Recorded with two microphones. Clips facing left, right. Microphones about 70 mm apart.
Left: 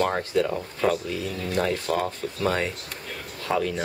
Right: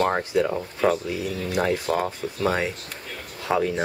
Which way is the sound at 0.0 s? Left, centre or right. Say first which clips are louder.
Right 2 dB; centre.